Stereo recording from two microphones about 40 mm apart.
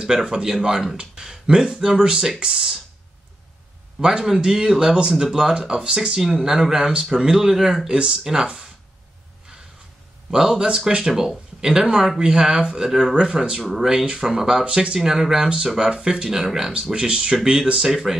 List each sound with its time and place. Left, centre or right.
0.0 s speech: centre
4.2 s speech: centre
10.3 s speech: centre
13.7 s speech: centre
14.6 s speech: right
15.0 s speech: centre